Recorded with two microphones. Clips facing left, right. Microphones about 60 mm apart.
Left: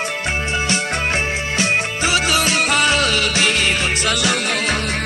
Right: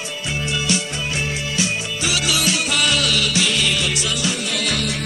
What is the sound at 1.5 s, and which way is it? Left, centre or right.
Music, left.